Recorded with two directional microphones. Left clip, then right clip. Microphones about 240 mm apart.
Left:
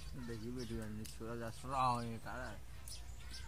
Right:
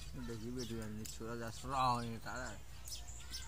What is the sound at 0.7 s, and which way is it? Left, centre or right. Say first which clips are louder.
Speech: right 1 dB; centre.